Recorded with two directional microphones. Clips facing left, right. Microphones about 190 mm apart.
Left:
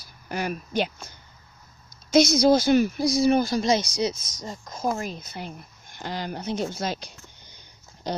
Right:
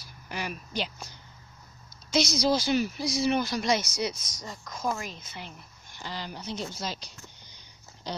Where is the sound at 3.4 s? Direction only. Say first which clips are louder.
Left 5 dB; 25° left (ahead or behind).